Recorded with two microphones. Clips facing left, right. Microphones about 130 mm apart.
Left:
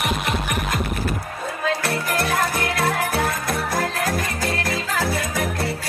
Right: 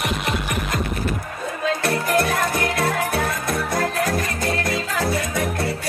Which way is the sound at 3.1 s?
25° left (ahead or behind).